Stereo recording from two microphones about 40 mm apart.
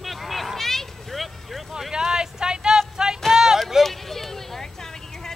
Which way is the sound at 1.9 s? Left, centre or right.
Centre.